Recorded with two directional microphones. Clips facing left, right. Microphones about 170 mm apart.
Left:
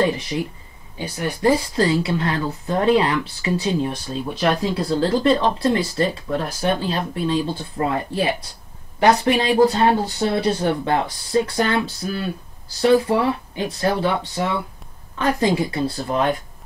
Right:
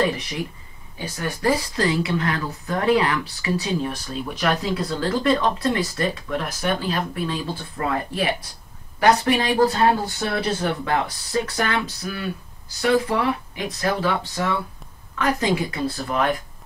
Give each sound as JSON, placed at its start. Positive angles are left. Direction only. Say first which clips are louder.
{"t": 0.0, "sound": "speech", "louder": "left 3 dB", "side_deg": 25}